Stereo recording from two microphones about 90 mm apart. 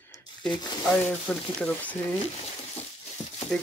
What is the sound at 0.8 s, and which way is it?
Cutlery, 15° left (ahead or behind).